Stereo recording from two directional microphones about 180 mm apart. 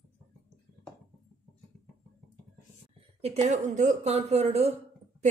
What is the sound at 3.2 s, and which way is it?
Speech, 40° right (ahead or behind).